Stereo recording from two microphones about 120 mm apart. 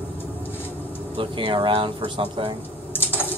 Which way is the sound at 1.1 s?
45° right (ahead or behind).